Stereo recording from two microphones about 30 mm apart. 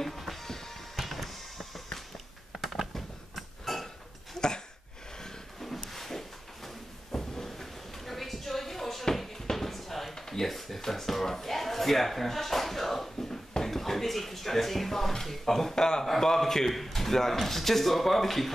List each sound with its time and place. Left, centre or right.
0.0 s music: centre
0.5 s music: centre
0.9 s music: centre
2.9 s a sound: centre
5.6 s a sound: centre
13.7 s speech: centre
15.7 s a man's voice: left; by 18.5 s centre